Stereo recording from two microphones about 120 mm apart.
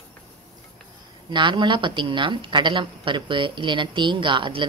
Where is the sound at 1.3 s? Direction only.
40° right (ahead or behind).